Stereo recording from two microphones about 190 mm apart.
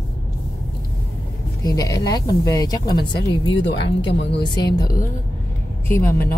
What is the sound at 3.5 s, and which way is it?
Speech, 75° left (ahead or behind).